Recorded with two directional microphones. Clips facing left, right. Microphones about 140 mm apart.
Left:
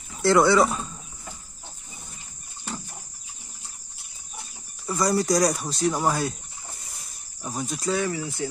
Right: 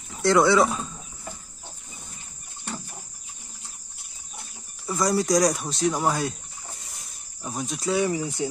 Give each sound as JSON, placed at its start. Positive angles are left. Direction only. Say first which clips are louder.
{"t": 0.2, "sound": "speech", "louder": "even", "side_deg": 0}
{"t": 4.8, "sound": "speech", "louder": "even", "side_deg": 0}
{"t": 6.9, "sound": "cricket", "louder": "even", "side_deg": 0}
{"t": 8.0, "sound": "speech", "louder": "right 3 dB", "side_deg": -20}